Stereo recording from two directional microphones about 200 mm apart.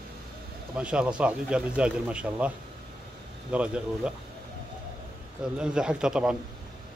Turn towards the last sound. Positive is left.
turn(degrees=-5)  # may be behind; listen again after turning